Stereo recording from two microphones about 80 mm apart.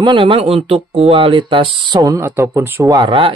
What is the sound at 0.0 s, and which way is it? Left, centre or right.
Speech, right.